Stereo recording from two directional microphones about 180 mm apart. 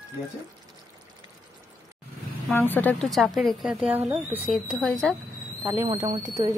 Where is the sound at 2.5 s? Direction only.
10° left (ahead or behind).